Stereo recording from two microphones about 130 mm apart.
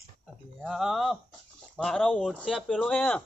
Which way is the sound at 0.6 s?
Centre (ahead or behind).